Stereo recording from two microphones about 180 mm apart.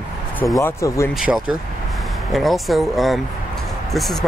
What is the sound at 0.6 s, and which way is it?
Speech, 15° left (ahead or behind).